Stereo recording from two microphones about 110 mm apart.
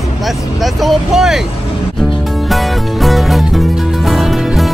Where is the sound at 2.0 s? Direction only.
5° left (ahead or behind).